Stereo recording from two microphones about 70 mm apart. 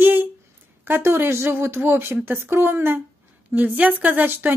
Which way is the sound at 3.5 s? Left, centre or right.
Right.